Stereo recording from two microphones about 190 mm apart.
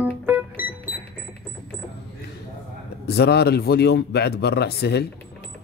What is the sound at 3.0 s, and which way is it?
Speech, 60° left (ahead or behind).